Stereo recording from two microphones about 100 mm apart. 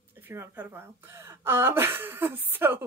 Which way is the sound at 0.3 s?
25° right (ahead or behind).